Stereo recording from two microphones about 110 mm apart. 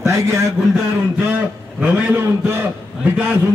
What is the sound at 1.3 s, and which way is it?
A man's voice, 15° right (ahead or behind).